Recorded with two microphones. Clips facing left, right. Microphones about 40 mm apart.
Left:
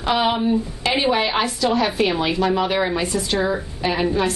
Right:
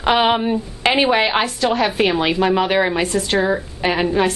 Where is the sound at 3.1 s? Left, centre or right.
Right.